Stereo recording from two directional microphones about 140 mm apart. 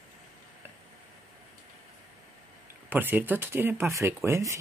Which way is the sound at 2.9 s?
15° right (ahead or behind).